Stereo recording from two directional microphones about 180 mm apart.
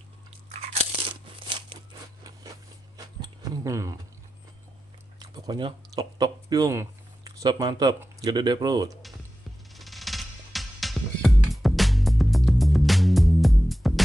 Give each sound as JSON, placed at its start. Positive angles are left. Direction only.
{"t": 0.5, "sound": "crunch", "side_deg": -35}
{"t": 3.2, "sound": "a sound", "side_deg": -20}
{"t": 5.2, "sound": "speech", "side_deg": -25}
{"t": 9.8, "sound": "music", "side_deg": 0}